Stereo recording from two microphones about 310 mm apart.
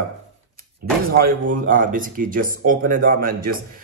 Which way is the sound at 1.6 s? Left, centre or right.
Right.